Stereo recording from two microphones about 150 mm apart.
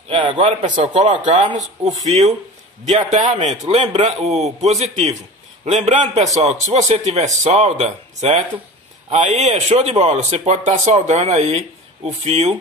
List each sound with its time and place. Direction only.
0.1 s speech: 35° right (ahead or behind)
3.3 s speech: 50° right (ahead or behind)